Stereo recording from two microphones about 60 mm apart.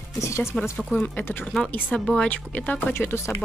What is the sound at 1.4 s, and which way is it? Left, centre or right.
Speech, centre.